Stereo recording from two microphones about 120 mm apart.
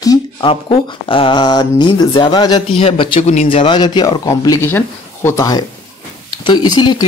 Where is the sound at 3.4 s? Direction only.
45° left (ahead or behind); by 5.4 s 20° left (ahead or behind).